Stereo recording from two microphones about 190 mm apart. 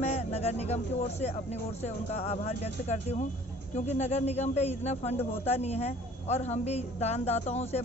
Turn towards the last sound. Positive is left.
turn(degrees=35)  # may be behind; listen again after turning